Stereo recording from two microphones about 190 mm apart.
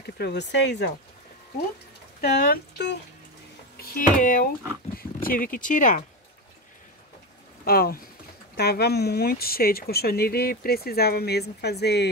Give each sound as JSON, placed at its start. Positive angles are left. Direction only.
{"t": 0.0, "sound": "speech", "side_deg": 60}
{"t": 2.2, "sound": "speech", "side_deg": 55}
{"t": 7.6, "sound": "speech", "side_deg": 50}